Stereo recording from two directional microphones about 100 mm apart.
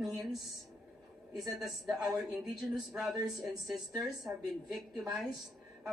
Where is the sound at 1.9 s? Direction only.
40° right (ahead or behind).